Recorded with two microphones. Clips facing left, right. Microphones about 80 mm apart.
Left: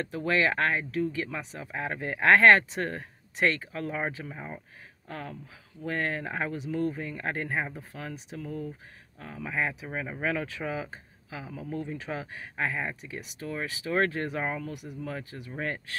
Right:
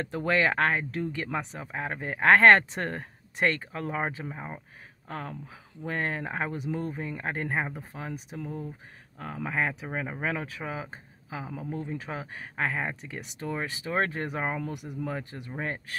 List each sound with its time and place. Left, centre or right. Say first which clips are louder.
0.1 s speech: right 2 dB; right
0.4 s speech: right 1 dB; right
1.7 s speech: left 3 dB; right
4.3 s speech: right 1 dB; centre
5.0 s speech: right 2 dB; right
9.2 s speech: right 2 dB; right
11.7 s speech: left 2 dB; centre
12.5 s speech: right 1 dB; right
15.5 s speech: even; centre